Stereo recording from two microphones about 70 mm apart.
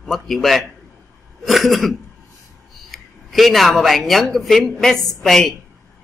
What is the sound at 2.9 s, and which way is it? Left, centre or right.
Speech, centre.